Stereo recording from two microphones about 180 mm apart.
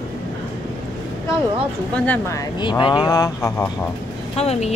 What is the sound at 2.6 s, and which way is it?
Speech, 25° left (ahead or behind).